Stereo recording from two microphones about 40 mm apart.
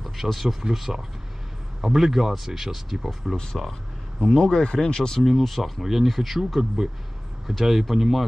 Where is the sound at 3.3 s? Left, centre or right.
Centre.